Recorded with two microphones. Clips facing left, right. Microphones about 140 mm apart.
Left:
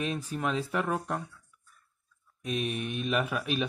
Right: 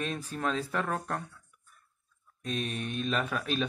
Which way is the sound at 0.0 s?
10° left (ahead or behind).